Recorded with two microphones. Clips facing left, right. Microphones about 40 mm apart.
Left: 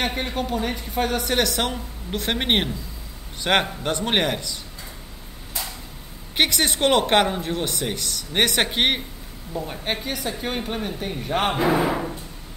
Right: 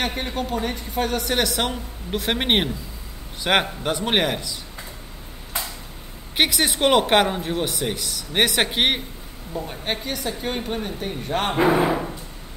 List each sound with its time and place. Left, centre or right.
0.0 s a woman's voice: centre
6.3 s a woman's voice: centre
11.5 s speech: centre